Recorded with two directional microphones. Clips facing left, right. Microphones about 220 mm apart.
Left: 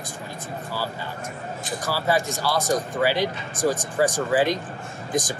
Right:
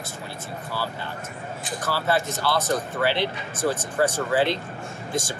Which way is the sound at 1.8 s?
10° left (ahead or behind).